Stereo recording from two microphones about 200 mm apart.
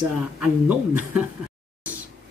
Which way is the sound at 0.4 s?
5° right (ahead or behind).